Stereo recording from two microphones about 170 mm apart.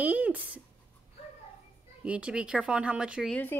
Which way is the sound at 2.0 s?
5° right (ahead or behind).